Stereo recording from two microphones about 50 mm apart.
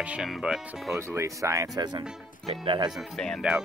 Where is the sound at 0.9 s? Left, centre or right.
Right.